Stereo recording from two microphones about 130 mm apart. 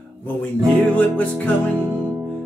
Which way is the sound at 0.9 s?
10° left (ahead or behind).